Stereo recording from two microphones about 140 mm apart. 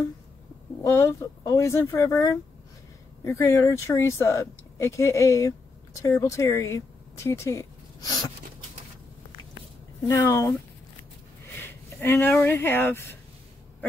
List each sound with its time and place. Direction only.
0.8 s speech: 20° left (ahead or behind)
10.1 s speech: 20° left (ahead or behind)
11.5 s speech: 15° left (ahead or behind)